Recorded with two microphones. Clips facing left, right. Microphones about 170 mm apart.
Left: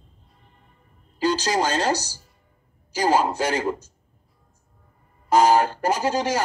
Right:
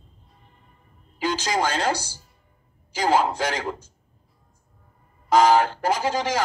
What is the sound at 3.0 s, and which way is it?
Speech, 10° left (ahead or behind).